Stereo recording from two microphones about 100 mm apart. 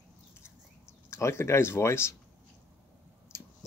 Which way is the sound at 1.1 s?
30° left (ahead or behind).